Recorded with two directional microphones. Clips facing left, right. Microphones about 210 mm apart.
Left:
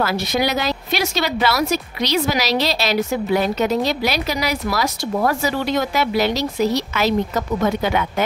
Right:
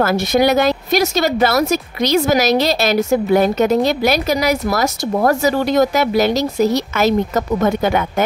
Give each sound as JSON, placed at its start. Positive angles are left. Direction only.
{"t": 0.0, "sound": "a woman's voice", "side_deg": -50}